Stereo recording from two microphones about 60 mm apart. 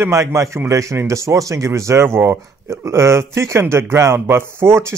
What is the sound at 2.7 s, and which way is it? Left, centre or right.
Speech, right.